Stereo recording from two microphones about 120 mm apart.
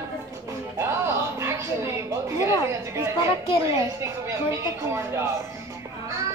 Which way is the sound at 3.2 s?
45° left (ahead or behind).